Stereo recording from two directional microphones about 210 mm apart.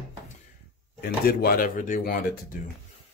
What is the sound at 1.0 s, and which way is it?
Speech, 50° left (ahead or behind).